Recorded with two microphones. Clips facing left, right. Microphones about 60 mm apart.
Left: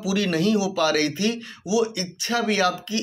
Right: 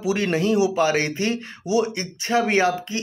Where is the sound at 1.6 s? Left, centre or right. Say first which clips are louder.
Right 1 dB; right.